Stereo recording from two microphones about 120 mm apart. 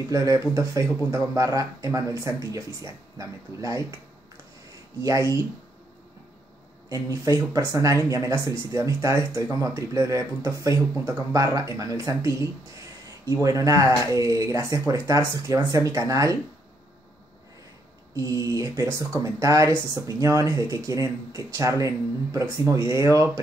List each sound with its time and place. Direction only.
0.1 s speech: 25° right (ahead or behind)
5.0 s speech: 25° right (ahead or behind)
6.9 s speech: 25° right (ahead or behind)
13.4 s speech: 30° right (ahead or behind)
18.1 s speech: 25° right (ahead or behind)